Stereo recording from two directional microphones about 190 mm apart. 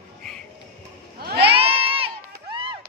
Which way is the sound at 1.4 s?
30° right (ahead or behind).